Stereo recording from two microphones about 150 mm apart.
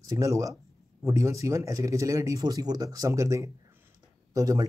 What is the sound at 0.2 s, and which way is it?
Speech, 20° right (ahead or behind).